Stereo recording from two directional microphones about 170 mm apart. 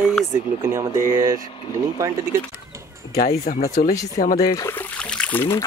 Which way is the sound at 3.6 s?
55° left (ahead or behind).